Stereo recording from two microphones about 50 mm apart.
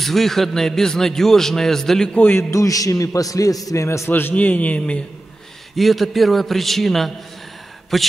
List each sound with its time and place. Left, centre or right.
0.0 s speech: centre
2.1 s a man's voice: left
2.5 s a man's voice: left
4.1 s a man's voice: left
5.8 s a man's voice: centre